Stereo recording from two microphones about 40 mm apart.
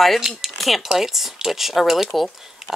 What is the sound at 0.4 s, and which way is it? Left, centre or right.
Speech, centre.